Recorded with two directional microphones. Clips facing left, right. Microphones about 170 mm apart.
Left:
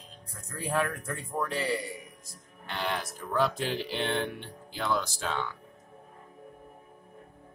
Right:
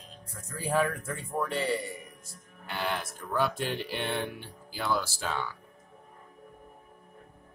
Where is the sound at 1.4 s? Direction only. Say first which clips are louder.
Right 1 dB; centre (ahead or behind).